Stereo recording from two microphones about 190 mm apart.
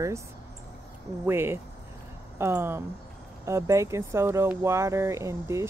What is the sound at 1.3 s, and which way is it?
Speech, 10° right (ahead or behind).